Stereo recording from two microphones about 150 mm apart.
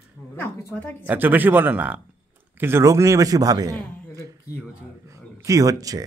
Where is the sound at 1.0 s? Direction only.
10° right (ahead or behind).